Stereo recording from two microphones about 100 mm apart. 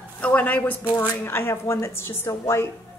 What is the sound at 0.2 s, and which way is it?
A woman's voice, 15° left (ahead or behind).